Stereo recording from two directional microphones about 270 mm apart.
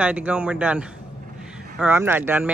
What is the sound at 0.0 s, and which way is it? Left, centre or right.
Speech, centre.